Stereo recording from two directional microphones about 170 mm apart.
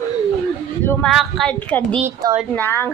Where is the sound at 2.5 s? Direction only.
10° left (ahead or behind).